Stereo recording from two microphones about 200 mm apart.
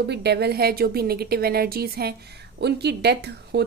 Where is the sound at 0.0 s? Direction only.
55° right (ahead or behind).